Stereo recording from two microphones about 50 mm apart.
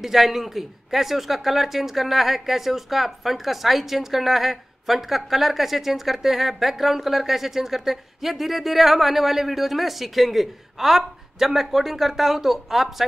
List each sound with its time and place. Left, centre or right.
0.0 s speech: centre